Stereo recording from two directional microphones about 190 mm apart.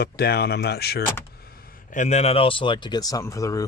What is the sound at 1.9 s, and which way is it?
Speech, 40° left (ahead or behind).